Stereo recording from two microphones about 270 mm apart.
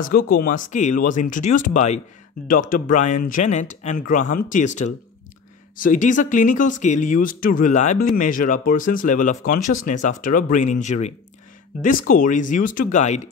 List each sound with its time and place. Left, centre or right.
0.0 s speech: left